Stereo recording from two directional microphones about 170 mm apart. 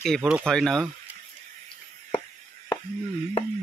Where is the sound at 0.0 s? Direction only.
Centre (ahead or behind).